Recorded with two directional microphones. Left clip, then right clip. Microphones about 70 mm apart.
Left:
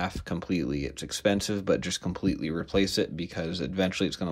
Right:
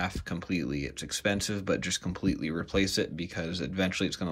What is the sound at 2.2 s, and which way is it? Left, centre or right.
Speech, centre.